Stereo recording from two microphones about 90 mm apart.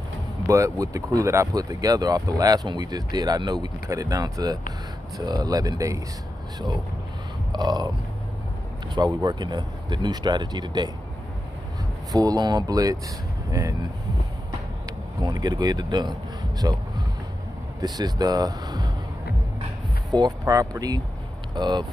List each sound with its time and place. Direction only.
0.5 s speech: 35° right (ahead or behind)
7.5 s speech: 50° right (ahead or behind)
8.9 s speech: 50° right (ahead or behind)
12.1 s speech: 45° right (ahead or behind)
15.2 s speech: 45° right (ahead or behind)
17.8 s speech: 45° right (ahead or behind)
20.1 s speech: 45° right (ahead or behind)
21.5 s speech: 55° right (ahead or behind)